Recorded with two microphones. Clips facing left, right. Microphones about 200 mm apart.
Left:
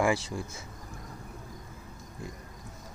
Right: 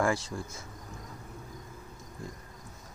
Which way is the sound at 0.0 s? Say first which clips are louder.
Left 2 dB; 5° left (ahead or behind).